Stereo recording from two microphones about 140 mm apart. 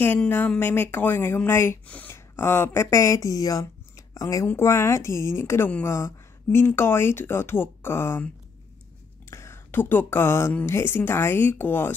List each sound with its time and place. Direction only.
0.0 s speech: 15° left (ahead or behind)
9.3 s speech: 20° left (ahead or behind)